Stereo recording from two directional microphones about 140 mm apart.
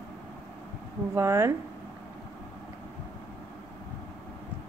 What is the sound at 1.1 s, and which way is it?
Speech, 20° right (ahead or behind).